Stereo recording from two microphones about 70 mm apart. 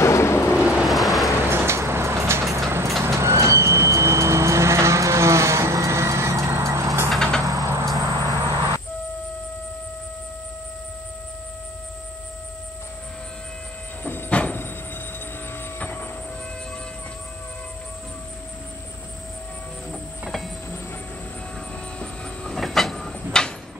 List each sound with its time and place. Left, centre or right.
0.0 s vehicle: left
0.6 s vehicle: centre
0.8 s vehicle: centre
1.5 s vehicle: right
7.1 s vehicle: centre
7.6 s a sound: right
14.0 s train: left
15.8 s train: left
19.9 s train: centre
22.0 s train: centre